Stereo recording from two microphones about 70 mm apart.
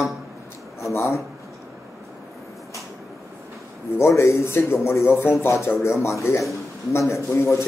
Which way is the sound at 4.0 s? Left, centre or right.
Left.